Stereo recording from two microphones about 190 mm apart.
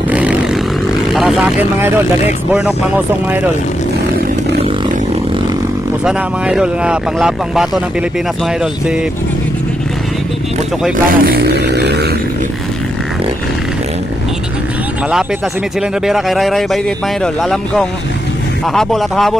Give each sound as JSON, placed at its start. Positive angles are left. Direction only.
{"t": 0.1, "sound": "vehicle", "side_deg": -5}
{"t": 1.1, "sound": "speech", "side_deg": 0}
{"t": 6.0, "sound": "speech", "side_deg": -5}
{"t": 11.1, "sound": "a sound", "side_deg": -55}
{"t": 16.1, "sound": "speech", "side_deg": 0}